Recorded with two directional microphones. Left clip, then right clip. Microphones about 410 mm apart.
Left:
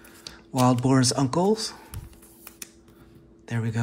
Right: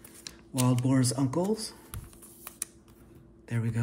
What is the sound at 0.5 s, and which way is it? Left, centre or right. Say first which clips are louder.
Speech: left 7 dB; centre.